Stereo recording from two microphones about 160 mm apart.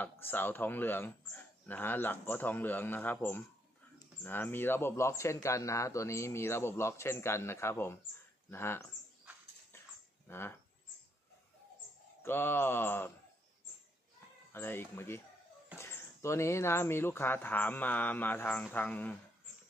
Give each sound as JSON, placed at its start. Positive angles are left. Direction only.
{"t": 0.0, "sound": "speech", "side_deg": 10}
{"t": 10.2, "sound": "speech", "side_deg": 15}
{"t": 12.2, "sound": "speech", "side_deg": 15}
{"t": 14.5, "sound": "speech", "side_deg": 15}